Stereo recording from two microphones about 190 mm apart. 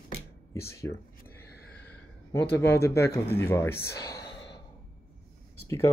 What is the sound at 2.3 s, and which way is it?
Speech, 10° left (ahead or behind).